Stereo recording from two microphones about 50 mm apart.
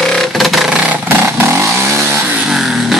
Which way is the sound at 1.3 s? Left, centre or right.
Right.